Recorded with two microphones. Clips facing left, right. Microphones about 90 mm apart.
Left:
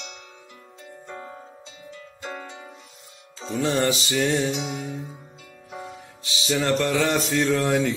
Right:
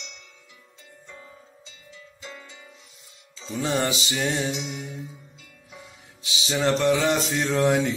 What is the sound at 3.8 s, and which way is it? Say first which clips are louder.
Mantra: left 3 dB; 15° right (ahead or behind).